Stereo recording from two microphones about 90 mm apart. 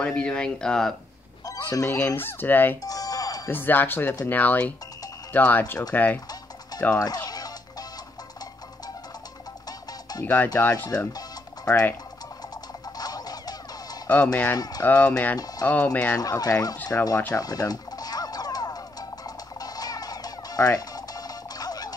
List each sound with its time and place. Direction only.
0.0 s speech: 10° left (ahead or behind)
1.4 s a sound: 45° left (ahead or behind)
1.9 s speech: 20° left (ahead or behind)
2.8 s music: 40° left (ahead or behind)
3.4 s speech: 20° left (ahead or behind)
6.7 s music: 45° left (ahead or behind)
9.7 s music: 45° left (ahead or behind)
10.2 s speech: 20° left (ahead or behind)
12.9 s music: 45° left (ahead or behind)
14.0 s speech: 15° left (ahead or behind)
16.2 s speech: 45° left (ahead or behind)
16.9 s speech: 25° left (ahead or behind)
17.3 s music: 45° left (ahead or behind)